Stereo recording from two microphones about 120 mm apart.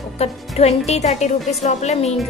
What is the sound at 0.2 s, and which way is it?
A woman's voice, 60° left (ahead or behind).